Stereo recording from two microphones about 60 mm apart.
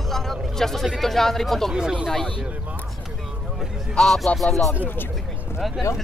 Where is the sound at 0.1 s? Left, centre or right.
Centre.